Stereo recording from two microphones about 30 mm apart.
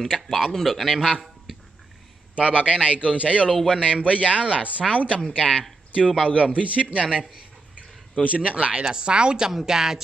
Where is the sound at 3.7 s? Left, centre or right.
Right.